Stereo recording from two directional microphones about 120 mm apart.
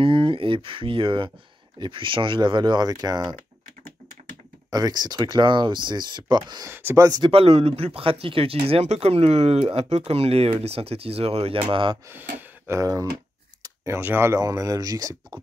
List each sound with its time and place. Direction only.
0.0 s speech: 45° right (ahead or behind)
4.6 s speech: 35° right (ahead or behind)
6.7 s speech: 20° right (ahead or behind)
7.1 s speech: 45° right (ahead or behind)
11.7 s speech: 40° right (ahead or behind)
12.1 s speech: 15° right (ahead or behind)